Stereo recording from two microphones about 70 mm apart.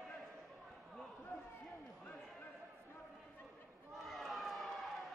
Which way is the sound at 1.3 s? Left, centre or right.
Centre.